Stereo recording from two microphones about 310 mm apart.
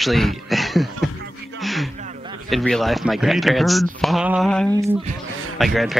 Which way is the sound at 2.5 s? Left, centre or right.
Centre.